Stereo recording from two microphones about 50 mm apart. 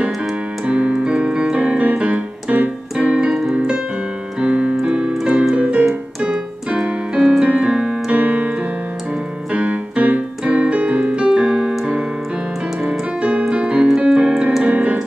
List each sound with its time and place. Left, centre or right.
0.7 s keyboard: right
8.1 s keyboard: right
12.8 s keyboard: right